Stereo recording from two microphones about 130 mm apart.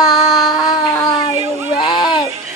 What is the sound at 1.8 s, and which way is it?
Speech, 40° left (ahead or behind).